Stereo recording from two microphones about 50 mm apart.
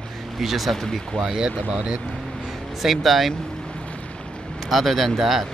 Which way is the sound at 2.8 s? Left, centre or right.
Centre.